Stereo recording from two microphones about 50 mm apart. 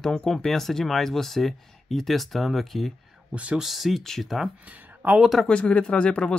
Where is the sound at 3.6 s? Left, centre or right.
Centre.